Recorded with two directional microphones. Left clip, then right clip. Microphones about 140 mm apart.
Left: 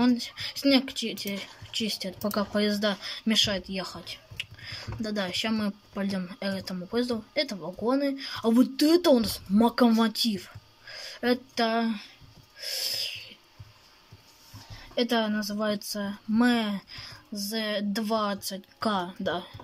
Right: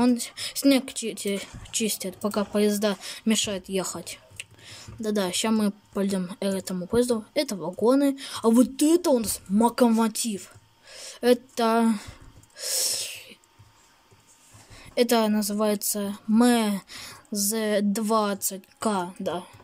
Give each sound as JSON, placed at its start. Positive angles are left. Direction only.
{"t": 0.0, "sound": "speech", "side_deg": -20}
{"t": 12.5, "sound": "a sound", "side_deg": -35}
{"t": 15.0, "sound": "speech", "side_deg": -30}